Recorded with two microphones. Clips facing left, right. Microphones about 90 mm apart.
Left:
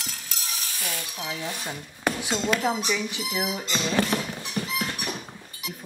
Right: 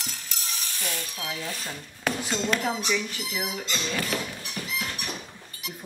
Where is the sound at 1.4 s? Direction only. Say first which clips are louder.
Left 2 dB; 20° left (ahead or behind).